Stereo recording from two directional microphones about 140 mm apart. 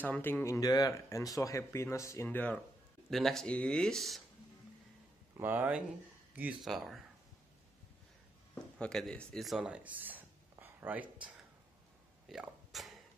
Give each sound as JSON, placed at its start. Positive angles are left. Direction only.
{"t": 0.0, "sound": "speech", "side_deg": 15}
{"t": 5.4, "sound": "speech", "side_deg": -15}
{"t": 6.7, "sound": "speech", "side_deg": 0}
{"t": 8.7, "sound": "speech", "side_deg": 5}
{"t": 10.6, "sound": "a sound", "side_deg": -15}